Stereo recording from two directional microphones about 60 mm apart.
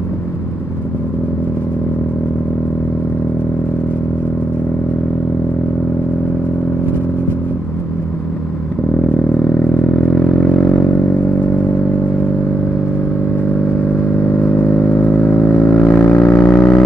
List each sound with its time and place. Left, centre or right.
14.3 s vehicle: left